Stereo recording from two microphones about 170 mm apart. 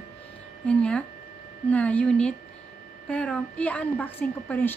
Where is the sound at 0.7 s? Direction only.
5° left (ahead or behind).